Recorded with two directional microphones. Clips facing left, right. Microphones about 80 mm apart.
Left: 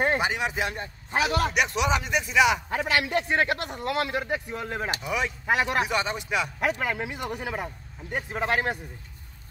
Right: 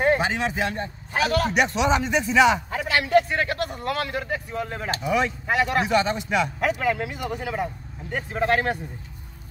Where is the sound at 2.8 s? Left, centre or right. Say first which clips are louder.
Right 5 dB; left.